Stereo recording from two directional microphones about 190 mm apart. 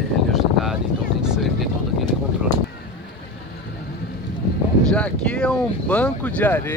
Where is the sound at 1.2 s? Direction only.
Centre (ahead or behind).